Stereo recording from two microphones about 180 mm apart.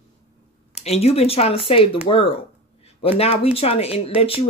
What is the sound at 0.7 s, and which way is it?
Speech, 35° left (ahead or behind).